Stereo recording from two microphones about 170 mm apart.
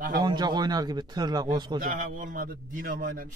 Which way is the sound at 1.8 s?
55° right (ahead or behind).